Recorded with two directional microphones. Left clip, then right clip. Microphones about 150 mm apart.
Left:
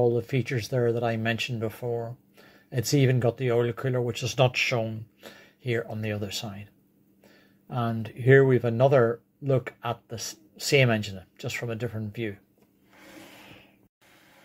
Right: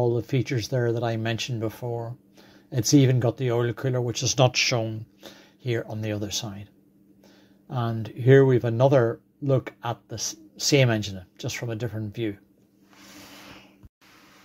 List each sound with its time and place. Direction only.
0.1 s speech: 30° right (ahead or behind)